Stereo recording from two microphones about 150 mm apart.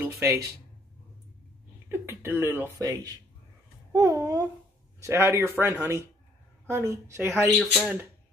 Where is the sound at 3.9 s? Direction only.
25° right (ahead or behind).